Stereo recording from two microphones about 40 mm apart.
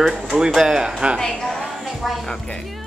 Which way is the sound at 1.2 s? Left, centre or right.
Centre.